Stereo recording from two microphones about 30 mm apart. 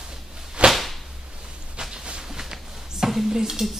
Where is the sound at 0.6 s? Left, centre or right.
Right.